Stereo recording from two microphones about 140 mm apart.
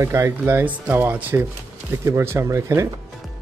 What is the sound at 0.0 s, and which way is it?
Speech, 20° right (ahead or behind).